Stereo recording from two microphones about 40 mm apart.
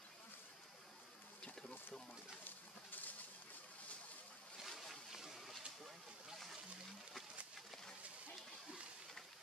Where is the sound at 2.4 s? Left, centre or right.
Left.